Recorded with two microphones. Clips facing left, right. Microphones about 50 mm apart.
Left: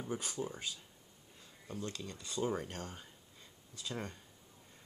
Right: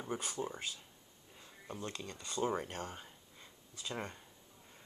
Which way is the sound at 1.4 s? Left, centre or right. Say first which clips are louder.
Left 1 dB; centre.